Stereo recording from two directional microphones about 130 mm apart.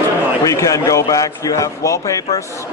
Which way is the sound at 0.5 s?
25° left (ahead or behind).